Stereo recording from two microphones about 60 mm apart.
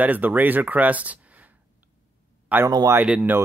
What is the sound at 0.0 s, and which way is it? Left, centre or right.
Speech, right.